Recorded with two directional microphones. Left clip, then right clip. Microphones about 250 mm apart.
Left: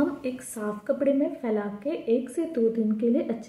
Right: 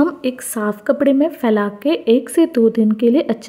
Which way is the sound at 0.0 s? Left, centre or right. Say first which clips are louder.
Right 10 dB; right.